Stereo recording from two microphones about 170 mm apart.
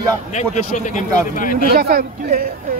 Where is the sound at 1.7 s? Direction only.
60° right (ahead or behind).